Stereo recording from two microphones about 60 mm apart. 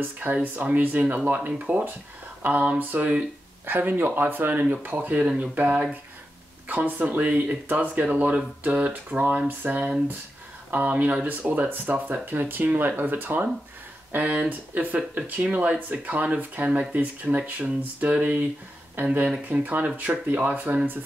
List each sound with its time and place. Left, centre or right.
0.0 s speech: right
5.2 s speech: centre
5.5 s speech: right